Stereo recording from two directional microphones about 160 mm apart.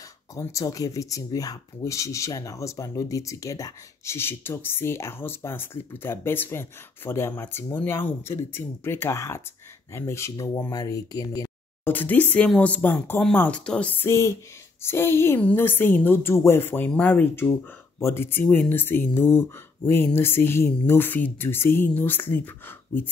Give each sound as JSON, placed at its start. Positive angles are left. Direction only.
{"t": 0.4, "sound": "speech", "side_deg": 20}
{"t": 11.9, "sound": "speech", "side_deg": 10}